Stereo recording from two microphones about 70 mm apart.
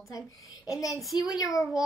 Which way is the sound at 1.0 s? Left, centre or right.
Centre.